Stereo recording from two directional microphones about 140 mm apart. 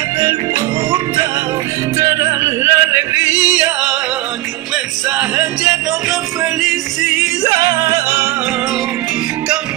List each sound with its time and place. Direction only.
2.0 s music: 20° right (ahead or behind)
5.1 s music: 10° right (ahead or behind)
7.4 s music: 25° right (ahead or behind)